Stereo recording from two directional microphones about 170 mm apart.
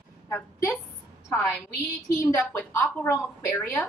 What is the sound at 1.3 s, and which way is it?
A woman's voice, 5° left (ahead or behind).